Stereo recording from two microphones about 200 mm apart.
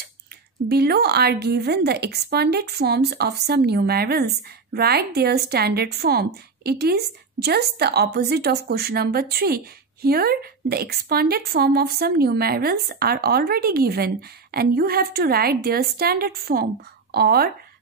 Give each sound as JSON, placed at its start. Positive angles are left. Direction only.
{"t": 0.7, "sound": "a woman's voice", "side_deg": -55}